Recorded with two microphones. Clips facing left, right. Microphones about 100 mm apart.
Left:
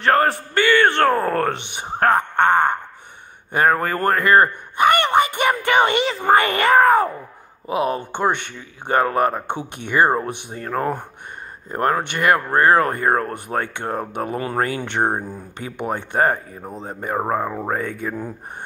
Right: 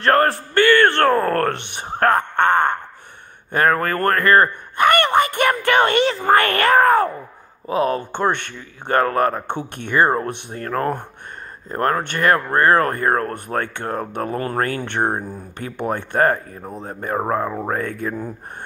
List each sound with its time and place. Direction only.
0.1 s speech: 5° left (ahead or behind)
2.0 s wail: 15° left (ahead or behind)
3.5 s speech: 15° left (ahead or behind)
7.6 s speech: 15° left (ahead or behind)